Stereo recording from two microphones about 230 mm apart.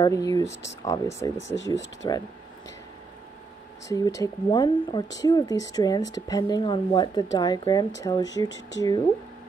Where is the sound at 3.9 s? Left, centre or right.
Centre.